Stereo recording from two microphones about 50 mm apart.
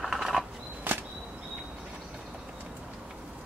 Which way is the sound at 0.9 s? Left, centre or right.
Right.